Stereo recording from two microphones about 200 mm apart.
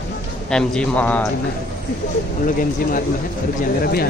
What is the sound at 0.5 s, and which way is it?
Speech, 5° left (ahead or behind).